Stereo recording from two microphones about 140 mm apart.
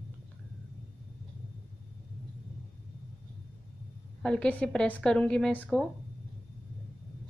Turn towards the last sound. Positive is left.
turn(degrees=10)  # may be behind; listen again after turning